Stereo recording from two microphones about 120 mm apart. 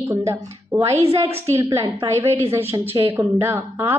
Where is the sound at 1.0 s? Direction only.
55° right (ahead or behind).